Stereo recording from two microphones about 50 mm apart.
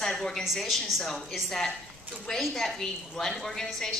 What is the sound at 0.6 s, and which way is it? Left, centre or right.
A woman's voice, centre.